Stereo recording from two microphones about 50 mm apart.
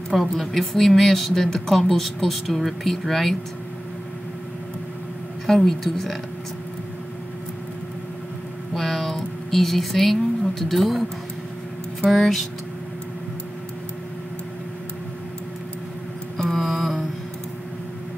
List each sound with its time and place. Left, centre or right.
0.1 s speech: centre
5.5 s speech: centre
8.7 s speech: centre
12.1 s speech: centre
16.3 s mantra: centre